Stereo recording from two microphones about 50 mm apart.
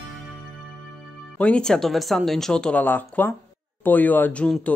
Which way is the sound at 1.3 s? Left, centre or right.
Left.